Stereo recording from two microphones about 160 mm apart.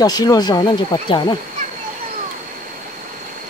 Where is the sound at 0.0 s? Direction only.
25° left (ahead or behind).